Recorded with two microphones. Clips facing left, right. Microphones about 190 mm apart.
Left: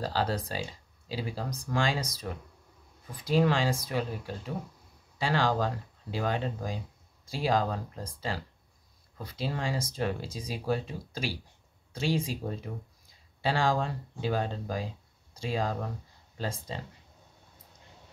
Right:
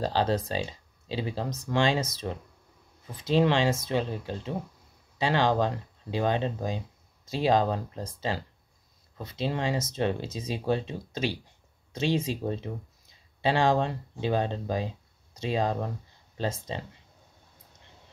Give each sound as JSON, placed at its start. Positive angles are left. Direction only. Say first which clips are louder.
{"t": 0.0, "sound": "speech", "louder": "right 4 dB", "side_deg": -25}